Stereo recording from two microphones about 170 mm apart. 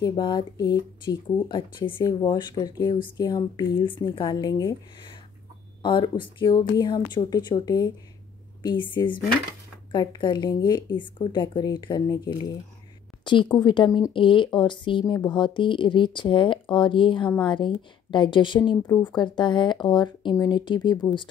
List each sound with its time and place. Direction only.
0.0 s speech: 25° left (ahead or behind)
5.8 s speech: 30° left (ahead or behind)
8.9 s speech: 30° left (ahead or behind)
13.2 s speech: 30° left (ahead or behind)